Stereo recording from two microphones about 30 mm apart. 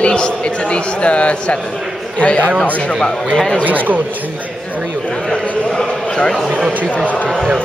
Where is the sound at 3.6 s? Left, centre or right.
Right.